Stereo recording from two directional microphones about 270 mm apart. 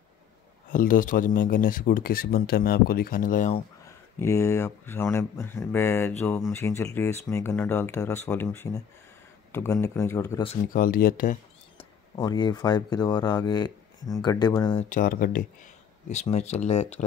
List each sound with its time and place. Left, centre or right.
0.7 s speech: left
3.8 s speech: centre
10.5 s speech: left
12.2 s speech: centre
14.9 s speech: left